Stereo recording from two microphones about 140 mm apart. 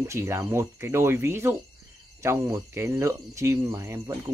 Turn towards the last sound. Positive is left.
turn(degrees=-20)  # may be behind; listen again after turning